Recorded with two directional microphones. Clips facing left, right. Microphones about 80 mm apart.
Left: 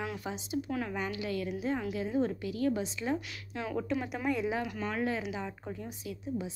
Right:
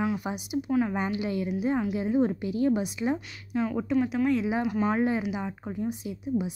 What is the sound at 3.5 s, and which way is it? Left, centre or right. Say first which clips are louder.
Speech: right 7 dB; centre.